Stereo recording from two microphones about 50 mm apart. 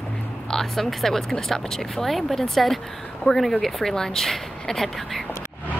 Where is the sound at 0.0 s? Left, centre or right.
Centre.